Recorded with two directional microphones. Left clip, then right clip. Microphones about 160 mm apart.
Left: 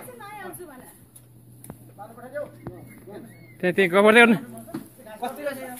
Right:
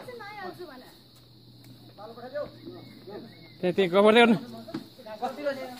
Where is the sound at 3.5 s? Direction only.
Centre (ahead or behind).